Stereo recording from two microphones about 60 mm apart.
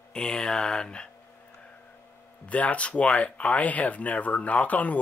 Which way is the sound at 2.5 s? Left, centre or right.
Left.